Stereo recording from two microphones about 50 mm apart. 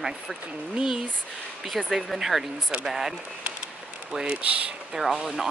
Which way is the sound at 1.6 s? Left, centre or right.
Centre.